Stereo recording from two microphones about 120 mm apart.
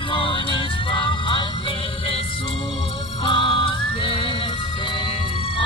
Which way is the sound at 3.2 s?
45° left (ahead or behind).